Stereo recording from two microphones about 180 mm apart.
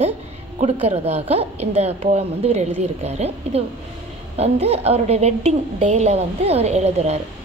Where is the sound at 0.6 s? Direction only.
35° right (ahead or behind).